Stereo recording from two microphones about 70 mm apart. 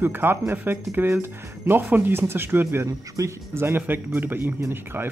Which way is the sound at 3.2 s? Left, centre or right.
Right.